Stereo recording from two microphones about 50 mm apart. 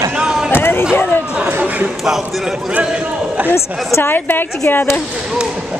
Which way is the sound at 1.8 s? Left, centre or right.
Centre.